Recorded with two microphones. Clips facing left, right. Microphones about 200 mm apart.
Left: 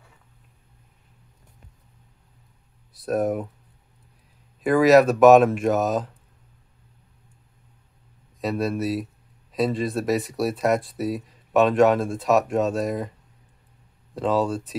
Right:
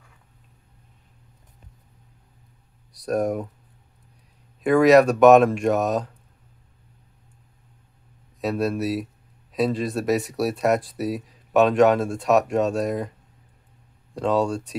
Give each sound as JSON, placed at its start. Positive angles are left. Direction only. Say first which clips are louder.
{"t": 2.9, "sound": "speech", "louder": "even", "side_deg": 0}
{"t": 4.6, "sound": "speech", "louder": "right 1 dB", "side_deg": 0}
{"t": 8.4, "sound": "speech", "louder": "right 1 dB", "side_deg": 0}
{"t": 14.1, "sound": "speech", "louder": "right 1 dB", "side_deg": 0}